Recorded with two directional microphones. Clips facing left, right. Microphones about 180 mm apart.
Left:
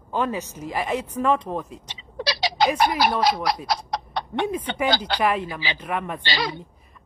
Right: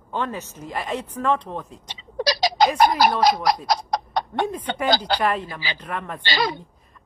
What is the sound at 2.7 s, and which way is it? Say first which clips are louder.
Speech: right 3 dB; 40° right (ahead or behind).